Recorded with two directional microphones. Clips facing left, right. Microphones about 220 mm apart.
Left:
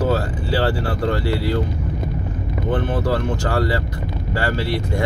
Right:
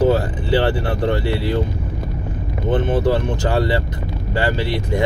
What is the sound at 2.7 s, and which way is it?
Speech, 20° right (ahead or behind).